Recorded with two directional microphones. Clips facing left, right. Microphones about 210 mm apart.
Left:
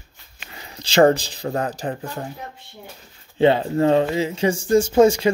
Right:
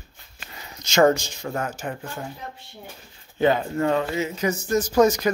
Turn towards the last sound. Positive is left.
turn(degrees=30)  # may be behind; listen again after turning